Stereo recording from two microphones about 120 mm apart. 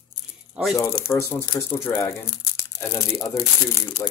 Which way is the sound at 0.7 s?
25° left (ahead or behind).